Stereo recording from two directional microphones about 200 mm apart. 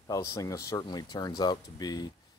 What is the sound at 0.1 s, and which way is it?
Speech, 15° left (ahead or behind).